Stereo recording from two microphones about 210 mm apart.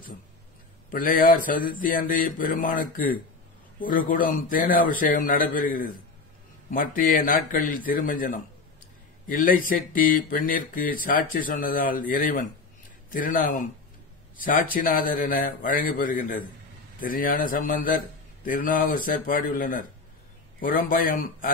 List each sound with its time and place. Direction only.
0.9 s speech: 40° left (ahead or behind)